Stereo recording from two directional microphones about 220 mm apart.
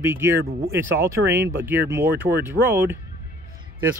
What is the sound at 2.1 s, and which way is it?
Speech, 50° right (ahead or behind).